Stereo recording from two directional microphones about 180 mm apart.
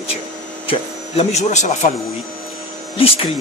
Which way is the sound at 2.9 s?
30° left (ahead or behind).